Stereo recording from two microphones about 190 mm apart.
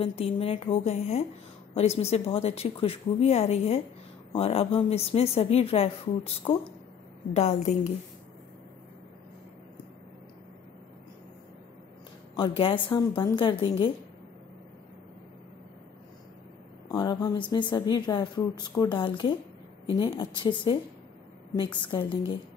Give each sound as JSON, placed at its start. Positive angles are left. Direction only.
{"t": 0.0, "sound": "a woman's voice", "side_deg": 30}
{"t": 12.4, "sound": "speech", "side_deg": 25}
{"t": 16.9, "sound": "speech", "side_deg": 20}
{"t": 21.8, "sound": "speech", "side_deg": 25}